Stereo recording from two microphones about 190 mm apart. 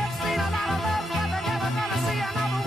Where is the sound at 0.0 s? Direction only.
Centre (ahead or behind).